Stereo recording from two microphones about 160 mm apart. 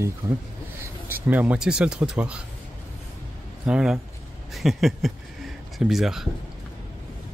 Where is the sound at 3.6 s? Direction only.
5° right (ahead or behind).